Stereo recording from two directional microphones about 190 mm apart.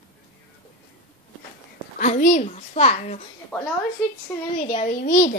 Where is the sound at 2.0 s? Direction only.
40° left (ahead or behind).